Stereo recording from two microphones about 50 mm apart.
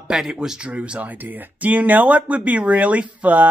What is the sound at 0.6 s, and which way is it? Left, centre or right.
Speech, right.